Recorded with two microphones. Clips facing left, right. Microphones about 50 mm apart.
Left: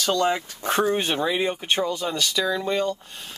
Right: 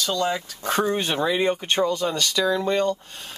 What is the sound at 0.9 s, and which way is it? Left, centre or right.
Speech, centre.